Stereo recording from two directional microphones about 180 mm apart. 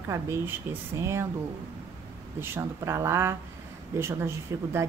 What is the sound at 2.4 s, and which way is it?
Speech, 15° right (ahead or behind).